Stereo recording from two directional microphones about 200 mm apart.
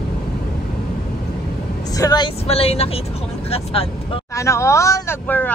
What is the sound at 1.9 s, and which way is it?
Speech, 20° left (ahead or behind).